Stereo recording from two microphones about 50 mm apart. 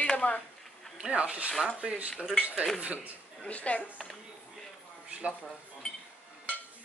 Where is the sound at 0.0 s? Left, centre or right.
Left.